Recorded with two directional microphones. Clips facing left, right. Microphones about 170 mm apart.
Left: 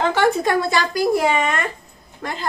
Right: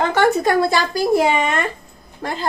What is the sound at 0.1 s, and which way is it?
A woman's voice, 45° right (ahead or behind).